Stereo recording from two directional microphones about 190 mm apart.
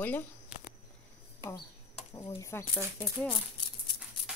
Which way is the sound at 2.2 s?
15° left (ahead or behind).